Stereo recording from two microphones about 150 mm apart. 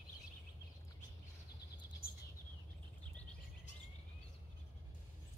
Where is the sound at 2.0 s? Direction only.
90° left.